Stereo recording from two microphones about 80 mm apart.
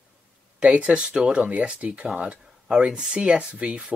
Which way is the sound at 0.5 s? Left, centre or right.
Centre.